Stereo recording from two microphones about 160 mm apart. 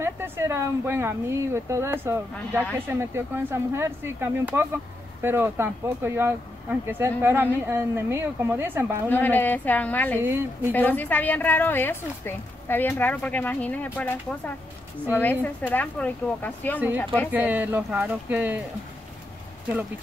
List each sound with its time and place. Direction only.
0.0 s speech: 15° right (ahead or behind)
9.1 s a woman's voice: 10° left (ahead or behind)
10.2 s speech: 15° right (ahead or behind)
10.7 s a woman's voice: 10° left (ahead or behind)
17.3 s speech: 10° right (ahead or behind)